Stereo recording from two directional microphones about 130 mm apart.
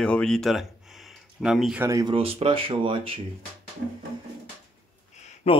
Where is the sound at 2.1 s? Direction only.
45° right (ahead or behind).